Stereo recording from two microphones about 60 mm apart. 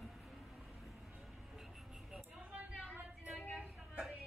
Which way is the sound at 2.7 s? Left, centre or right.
Right.